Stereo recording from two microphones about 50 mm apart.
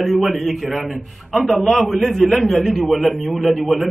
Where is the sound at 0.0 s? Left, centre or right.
Centre.